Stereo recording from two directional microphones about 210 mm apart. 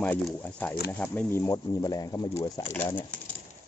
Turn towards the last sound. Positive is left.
turn(degrees=10)  # may be behind; listen again after turning